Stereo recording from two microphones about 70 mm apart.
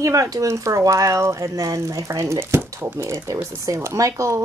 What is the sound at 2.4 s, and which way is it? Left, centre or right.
Speech, right.